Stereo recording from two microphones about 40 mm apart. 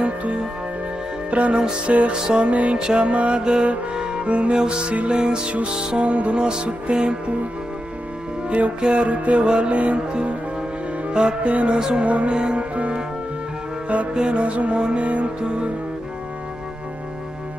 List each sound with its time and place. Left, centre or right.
0.0 s music: right
2.1 s music: centre
2.5 s music: right
2.8 s music: right
8.5 s music: right
11.4 s music: right
14.1 s music: right